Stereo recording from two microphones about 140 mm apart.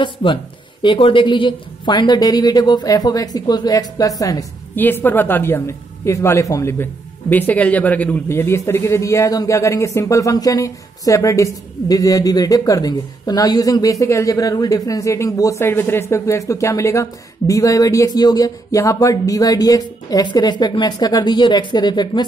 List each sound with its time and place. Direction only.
0.0 s speech: 35° left (ahead or behind)
4.7 s speech: 15° left (ahead or behind); by 22.2 s 30° left (ahead or behind)